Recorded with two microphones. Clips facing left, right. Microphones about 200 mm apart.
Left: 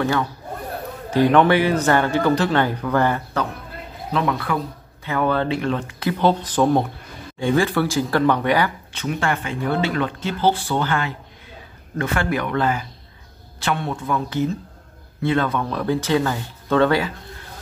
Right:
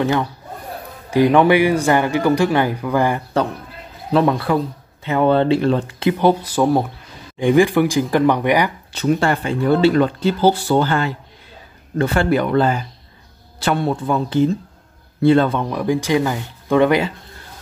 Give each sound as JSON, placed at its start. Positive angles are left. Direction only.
{"t": 0.0, "sound": "a man's voice", "side_deg": -20}
{"t": 4.1, "sound": "speech", "side_deg": -35}
{"t": 6.0, "sound": "a man's voice", "side_deg": -15}
{"t": 8.9, "sound": "speech", "side_deg": -35}
{"t": 15.6, "sound": "a man's voice", "side_deg": -15}